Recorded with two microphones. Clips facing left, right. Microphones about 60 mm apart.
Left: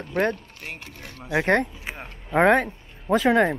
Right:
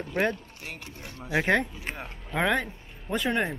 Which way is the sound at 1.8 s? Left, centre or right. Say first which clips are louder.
Left 1 dB; centre.